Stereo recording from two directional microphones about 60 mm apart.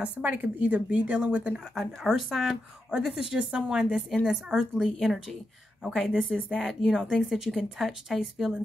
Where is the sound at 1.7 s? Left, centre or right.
Centre.